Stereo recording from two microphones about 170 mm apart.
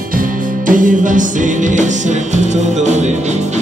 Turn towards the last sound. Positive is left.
turn(degrees=-40)  # may be behind; listen again after turning